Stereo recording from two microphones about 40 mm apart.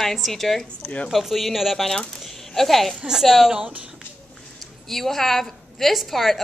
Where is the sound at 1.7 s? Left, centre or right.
Centre.